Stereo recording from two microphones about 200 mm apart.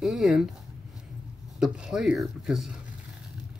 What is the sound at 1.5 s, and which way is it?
Speech, 5° right (ahead or behind).